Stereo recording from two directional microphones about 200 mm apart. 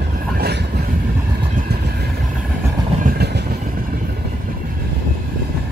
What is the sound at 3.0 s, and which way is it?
Train, 55° right (ahead or behind).